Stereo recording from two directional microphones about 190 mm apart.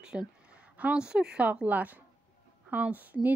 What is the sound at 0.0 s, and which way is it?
A woman's voice, 5° right (ahead or behind).